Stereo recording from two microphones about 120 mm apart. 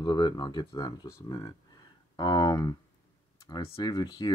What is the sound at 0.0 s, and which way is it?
Speech, 35° left (ahead or behind).